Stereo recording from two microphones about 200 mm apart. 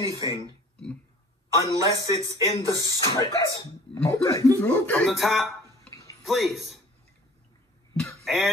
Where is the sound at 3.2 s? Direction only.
20° left (ahead or behind); by 6.8 s centre (ahead or behind).